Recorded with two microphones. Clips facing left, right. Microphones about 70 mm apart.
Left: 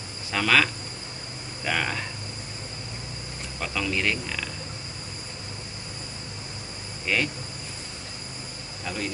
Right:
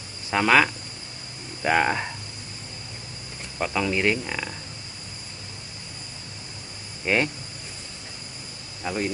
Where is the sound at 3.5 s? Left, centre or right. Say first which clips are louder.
Right 4 dB; centre.